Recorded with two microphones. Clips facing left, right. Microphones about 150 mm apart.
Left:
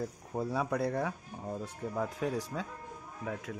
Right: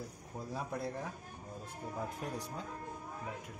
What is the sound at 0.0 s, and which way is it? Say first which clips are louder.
Speech: left 9 dB; 65° left (ahead or behind).